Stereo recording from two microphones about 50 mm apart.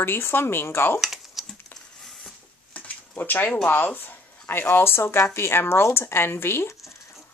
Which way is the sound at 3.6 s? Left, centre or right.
Left.